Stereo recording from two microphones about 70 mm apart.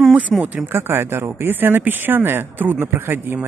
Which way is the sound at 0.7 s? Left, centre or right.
Right.